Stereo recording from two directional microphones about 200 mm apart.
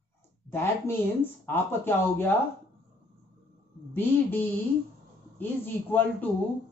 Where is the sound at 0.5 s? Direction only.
10° left (ahead or behind).